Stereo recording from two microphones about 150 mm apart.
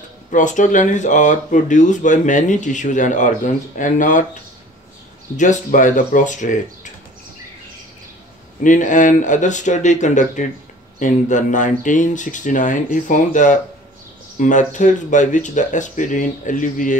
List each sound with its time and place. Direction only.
0.3 s speech: 55° left (ahead or behind)
5.4 s speech: 55° left (ahead or behind)
8.5 s speech: 60° left (ahead or behind)